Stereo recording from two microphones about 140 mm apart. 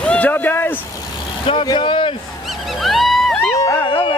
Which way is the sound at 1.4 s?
35° left (ahead or behind).